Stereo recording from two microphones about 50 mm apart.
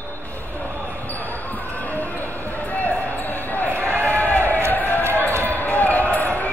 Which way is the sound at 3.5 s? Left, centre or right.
Left.